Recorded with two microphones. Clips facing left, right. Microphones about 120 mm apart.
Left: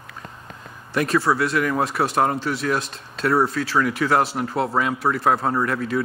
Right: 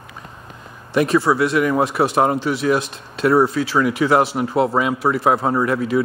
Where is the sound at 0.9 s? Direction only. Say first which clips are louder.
Right 4 dB; centre (ahead or behind).